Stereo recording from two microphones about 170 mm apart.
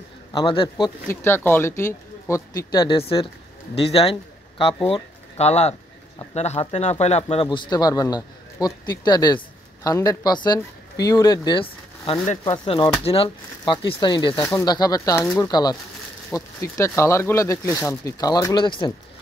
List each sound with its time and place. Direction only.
0.3 s speech: 30° left (ahead or behind)
1.0 s speech: 15° left (ahead or behind); by 18.9 s 30° left (ahead or behind)